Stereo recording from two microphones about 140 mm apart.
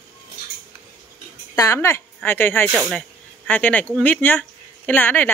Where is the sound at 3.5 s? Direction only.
10° left (ahead or behind).